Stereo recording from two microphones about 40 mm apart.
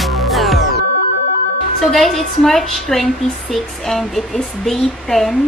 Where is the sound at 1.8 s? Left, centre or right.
Centre.